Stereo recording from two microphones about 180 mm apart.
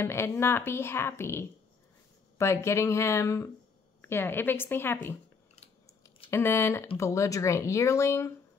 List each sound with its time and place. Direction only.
0.0 s a woman's voice: 15° left (ahead or behind)
6.3 s a woman's voice: 15° left (ahead or behind)